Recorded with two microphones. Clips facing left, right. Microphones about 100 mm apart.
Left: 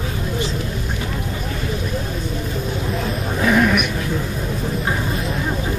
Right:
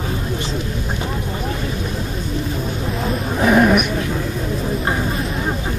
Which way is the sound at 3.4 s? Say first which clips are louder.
Right 3 dB; 25° right (ahead or behind).